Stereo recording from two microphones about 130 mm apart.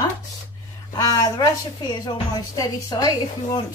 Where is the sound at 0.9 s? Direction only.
25° left (ahead or behind).